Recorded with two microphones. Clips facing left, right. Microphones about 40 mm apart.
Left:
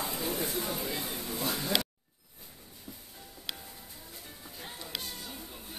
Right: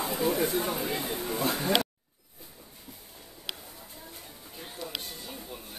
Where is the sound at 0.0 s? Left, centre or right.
Right.